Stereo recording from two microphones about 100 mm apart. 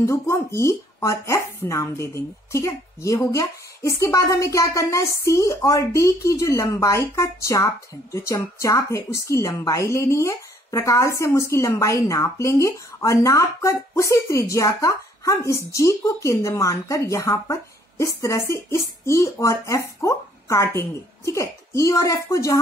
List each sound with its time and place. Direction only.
0.0 s speech: 30° left (ahead or behind)